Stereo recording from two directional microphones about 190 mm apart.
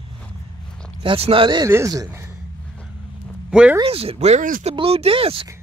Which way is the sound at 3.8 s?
30° right (ahead or behind).